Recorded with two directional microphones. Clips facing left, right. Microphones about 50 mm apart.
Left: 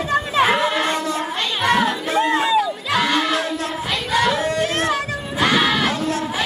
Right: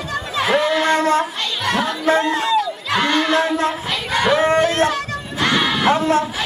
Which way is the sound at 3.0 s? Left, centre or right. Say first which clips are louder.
Right 2 dB; centre.